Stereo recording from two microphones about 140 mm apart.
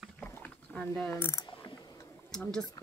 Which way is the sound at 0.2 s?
10° left (ahead or behind).